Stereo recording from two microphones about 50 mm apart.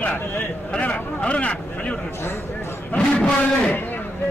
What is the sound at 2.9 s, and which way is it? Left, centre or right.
Speech, left.